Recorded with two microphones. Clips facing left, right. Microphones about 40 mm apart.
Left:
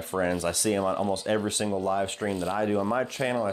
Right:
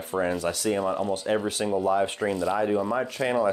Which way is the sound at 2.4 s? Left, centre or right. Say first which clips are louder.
Right 1 dB; centre.